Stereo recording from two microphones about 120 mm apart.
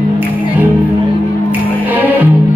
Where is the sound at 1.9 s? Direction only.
15° right (ahead or behind).